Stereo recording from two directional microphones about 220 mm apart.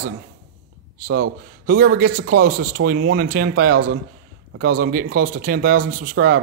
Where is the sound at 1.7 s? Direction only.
40° right (ahead or behind).